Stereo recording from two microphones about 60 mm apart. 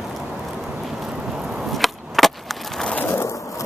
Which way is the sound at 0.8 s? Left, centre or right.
Centre.